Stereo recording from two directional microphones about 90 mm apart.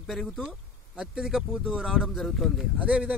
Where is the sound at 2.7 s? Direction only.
15° right (ahead or behind).